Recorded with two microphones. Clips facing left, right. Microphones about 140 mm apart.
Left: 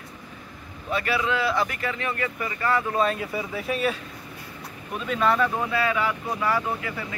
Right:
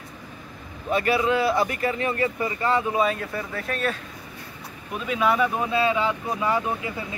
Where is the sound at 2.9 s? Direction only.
5° right (ahead or behind).